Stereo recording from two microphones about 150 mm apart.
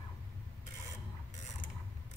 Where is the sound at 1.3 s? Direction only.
55° left (ahead or behind).